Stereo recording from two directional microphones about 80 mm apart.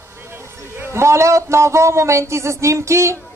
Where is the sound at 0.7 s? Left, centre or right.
Right.